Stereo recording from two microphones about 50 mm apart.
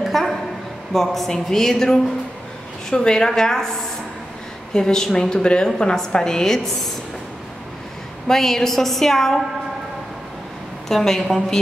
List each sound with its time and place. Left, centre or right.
0.0 s a sound: centre
0.9 s a woman's voice: centre
4.7 s a woman's voice: centre
8.3 s a woman's voice: centre
10.9 s a woman's voice: centre